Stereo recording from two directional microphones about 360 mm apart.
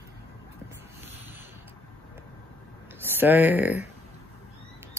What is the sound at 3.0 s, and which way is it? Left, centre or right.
Speech, centre.